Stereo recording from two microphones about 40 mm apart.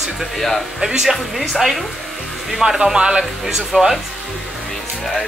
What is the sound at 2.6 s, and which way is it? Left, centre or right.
Speech, centre.